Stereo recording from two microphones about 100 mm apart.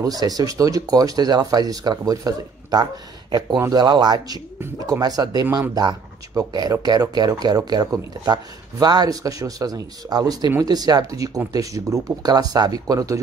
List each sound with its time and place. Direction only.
0.0 s speech: 40° right (ahead or behind)